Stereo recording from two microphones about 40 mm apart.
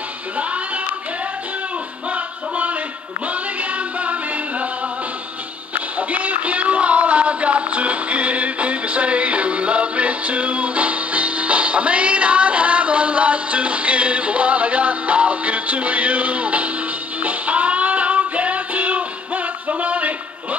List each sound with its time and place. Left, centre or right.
0.4 s music: right
2.0 s music: right
5.9 s a sound: right
17.2 s music: right